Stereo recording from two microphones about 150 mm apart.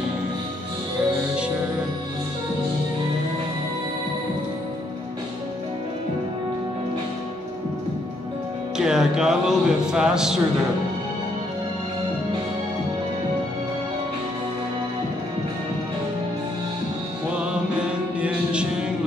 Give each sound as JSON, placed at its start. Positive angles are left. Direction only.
{"t": 8.7, "sound": "music", "side_deg": -5}
{"t": 17.4, "sound": "music", "side_deg": -10}